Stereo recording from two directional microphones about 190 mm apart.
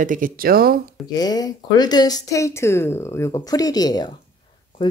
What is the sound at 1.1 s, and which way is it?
Speech, 20° left (ahead or behind).